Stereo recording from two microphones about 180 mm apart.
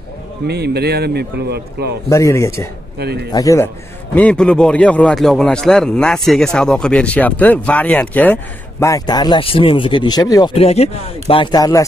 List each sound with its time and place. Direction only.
0.5 s a man's voice: 65° right (ahead or behind)
2.0 s a man's voice: 15° left (ahead or behind)
3.0 s a man's voice: 60° right (ahead or behind)
3.3 s a man's voice: 20° left (ahead or behind)
10.5 s speech: 35° left (ahead or behind)